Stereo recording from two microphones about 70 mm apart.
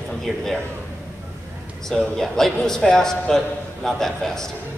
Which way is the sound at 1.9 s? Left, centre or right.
Centre.